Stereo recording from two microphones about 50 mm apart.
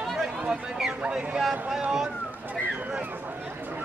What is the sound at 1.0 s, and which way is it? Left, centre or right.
Speech, right.